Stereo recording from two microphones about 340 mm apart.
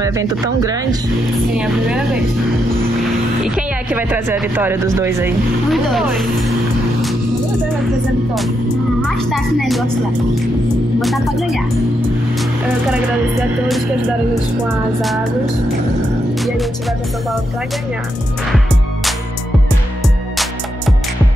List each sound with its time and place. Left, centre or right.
0.0 s speech: centre
3.4 s speech: centre
9.0 s speech: centre
11.0 s speech: centre
13.7 s speech: centre